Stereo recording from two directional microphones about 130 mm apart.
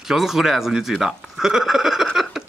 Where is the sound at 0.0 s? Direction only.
Centre (ahead or behind).